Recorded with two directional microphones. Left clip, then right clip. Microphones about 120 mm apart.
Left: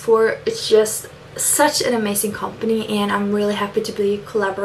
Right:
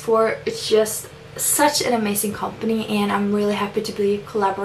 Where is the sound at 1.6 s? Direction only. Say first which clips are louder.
Left 1 dB; 15° left (ahead or behind).